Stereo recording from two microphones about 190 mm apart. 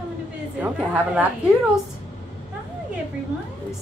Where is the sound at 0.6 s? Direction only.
5° right (ahead or behind).